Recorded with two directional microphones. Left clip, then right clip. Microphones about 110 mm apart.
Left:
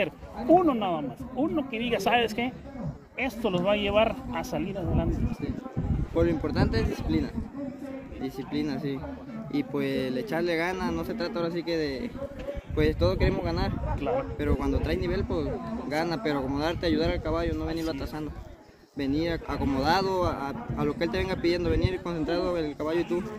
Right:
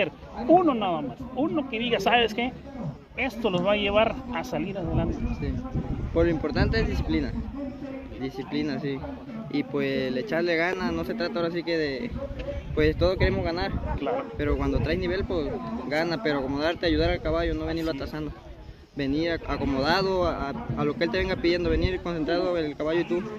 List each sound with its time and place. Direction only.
0.5 s speech: 5° right (ahead or behind)
6.1 s speech: 35° left (ahead or behind)
8.5 s speech: 35° left (ahead or behind)
15.5 s speech: 45° right (ahead or behind)
15.9 s speech: 35° left (ahead or behind)
18.9 s speech: 35° left (ahead or behind)